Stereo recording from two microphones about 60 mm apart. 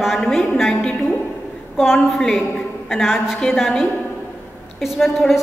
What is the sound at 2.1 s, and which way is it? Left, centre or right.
A woman's voice, centre.